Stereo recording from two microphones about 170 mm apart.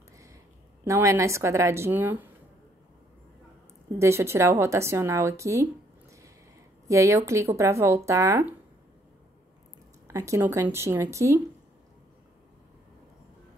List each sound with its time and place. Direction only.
0.8 s a woman's voice: 15° right (ahead or behind)
4.0 s a woman's voice: 15° right (ahead or behind)
6.9 s a woman's voice: 20° right (ahead or behind)
10.0 s a woman's voice: 20° right (ahead or behind)